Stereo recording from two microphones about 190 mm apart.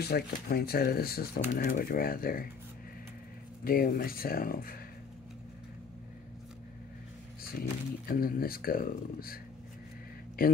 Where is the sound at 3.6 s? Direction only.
50° left (ahead or behind).